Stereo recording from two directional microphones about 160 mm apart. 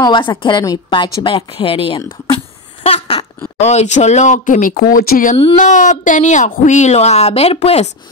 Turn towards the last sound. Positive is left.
turn(degrees=40)  # may be behind; listen again after turning